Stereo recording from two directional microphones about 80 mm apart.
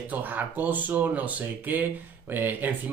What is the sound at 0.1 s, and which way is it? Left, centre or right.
Speech, right.